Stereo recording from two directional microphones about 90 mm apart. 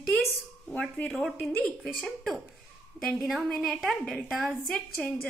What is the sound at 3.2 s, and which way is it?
A woman's voice, centre (ahead or behind).